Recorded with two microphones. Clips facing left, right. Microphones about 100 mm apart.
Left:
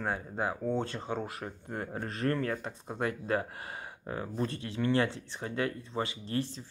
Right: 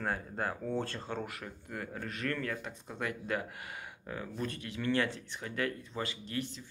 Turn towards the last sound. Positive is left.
turn(degrees=35)  # may be behind; listen again after turning